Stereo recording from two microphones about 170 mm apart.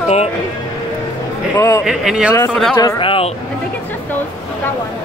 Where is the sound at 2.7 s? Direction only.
25° left (ahead or behind).